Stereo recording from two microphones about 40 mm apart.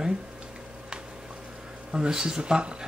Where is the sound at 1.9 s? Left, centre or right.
Centre.